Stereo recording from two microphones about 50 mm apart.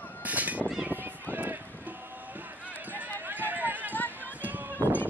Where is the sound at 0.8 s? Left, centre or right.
Right.